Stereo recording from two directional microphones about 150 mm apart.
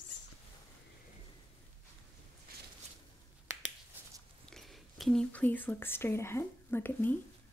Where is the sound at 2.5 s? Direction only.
80° right.